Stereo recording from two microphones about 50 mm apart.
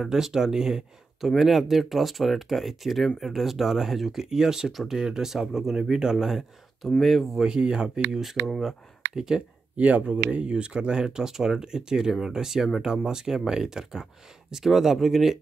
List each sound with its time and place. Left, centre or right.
0.1 s speech: centre
7.3 s speech: centre
8.2 s speech: centre
9.1 s speech: centre
9.8 s speech: right; by 15.3 s centre